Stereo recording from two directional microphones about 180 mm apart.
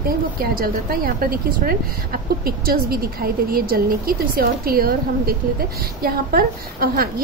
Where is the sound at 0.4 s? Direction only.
55° right (ahead or behind).